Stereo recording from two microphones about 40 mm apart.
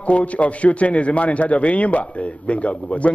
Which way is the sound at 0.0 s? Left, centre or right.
Left.